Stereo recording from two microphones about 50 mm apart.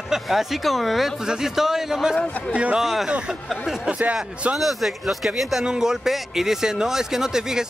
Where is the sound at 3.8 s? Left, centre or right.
Right.